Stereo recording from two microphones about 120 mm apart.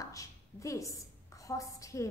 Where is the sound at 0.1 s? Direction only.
25° left (ahead or behind).